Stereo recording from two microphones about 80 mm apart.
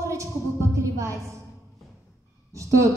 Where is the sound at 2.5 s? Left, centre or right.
Right.